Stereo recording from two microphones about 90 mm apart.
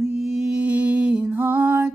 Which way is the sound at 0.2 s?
5° right (ahead or behind).